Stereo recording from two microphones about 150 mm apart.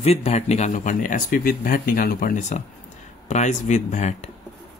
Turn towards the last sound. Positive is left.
turn(degrees=50)  # may be behind; listen again after turning